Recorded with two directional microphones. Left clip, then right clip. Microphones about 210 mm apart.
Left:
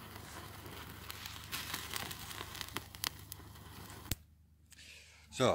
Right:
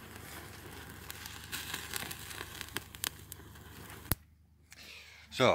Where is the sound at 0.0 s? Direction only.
Centre (ahead or behind).